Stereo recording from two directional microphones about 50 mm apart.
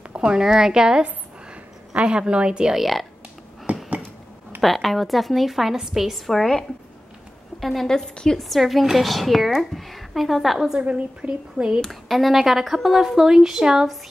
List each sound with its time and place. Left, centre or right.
0.2 s speech: centre
2.7 s a woman's voice: centre
3.7 s a sound: right
4.6 s a woman's voice: centre
7.6 s a woman's voice: centre
10.8 s speech: right
11.8 s speech: centre